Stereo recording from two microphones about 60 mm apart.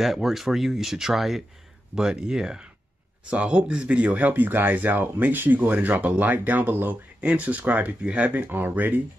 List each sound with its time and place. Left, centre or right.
0.0 s speech: centre; by 7.0 s right
7.2 s speech: right
8.4 s speech: right